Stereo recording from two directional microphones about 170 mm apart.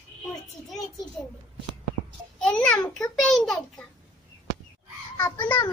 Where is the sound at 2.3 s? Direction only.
5° left (ahead or behind).